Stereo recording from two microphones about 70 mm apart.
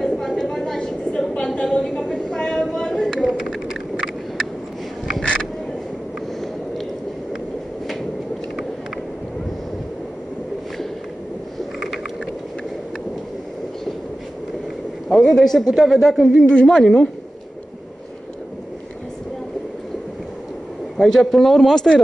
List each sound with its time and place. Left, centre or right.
0.0 s a sound: centre
5.2 s mechanisms: centre
15.0 s a woman's voice: centre
21.0 s speech: centre